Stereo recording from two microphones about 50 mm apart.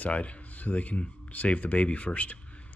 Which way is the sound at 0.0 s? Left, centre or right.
Left.